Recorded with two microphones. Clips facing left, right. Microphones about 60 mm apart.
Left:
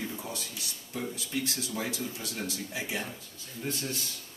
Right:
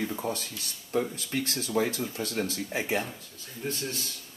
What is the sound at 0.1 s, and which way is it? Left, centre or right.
Speech, right.